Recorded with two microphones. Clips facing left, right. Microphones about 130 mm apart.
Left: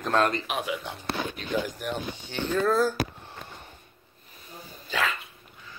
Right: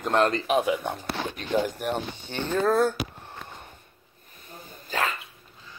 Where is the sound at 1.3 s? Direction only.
50° right (ahead or behind).